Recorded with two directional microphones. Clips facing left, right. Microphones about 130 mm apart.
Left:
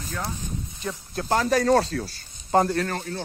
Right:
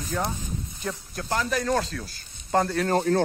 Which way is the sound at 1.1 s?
25° left (ahead or behind).